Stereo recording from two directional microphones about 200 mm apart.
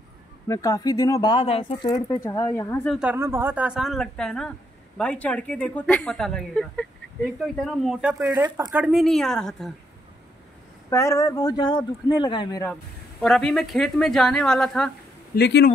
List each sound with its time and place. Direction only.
0.5 s speech: 15° left (ahead or behind)
3.0 s speech: 10° right (ahead or behind)
8.2 s speech: 20° right (ahead or behind)
8.7 s speech: 5° right (ahead or behind)
10.9 s speech: 15° left (ahead or behind)
13.2 s speech: 5° left (ahead or behind)
15.3 s speech: 55° left (ahead or behind)